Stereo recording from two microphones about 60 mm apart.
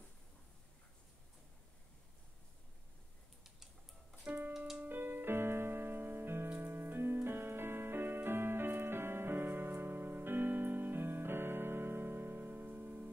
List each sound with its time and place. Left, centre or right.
4.3 s music: right